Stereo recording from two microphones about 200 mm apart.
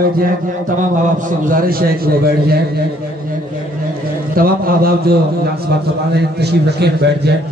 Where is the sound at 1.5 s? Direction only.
45° right (ahead or behind).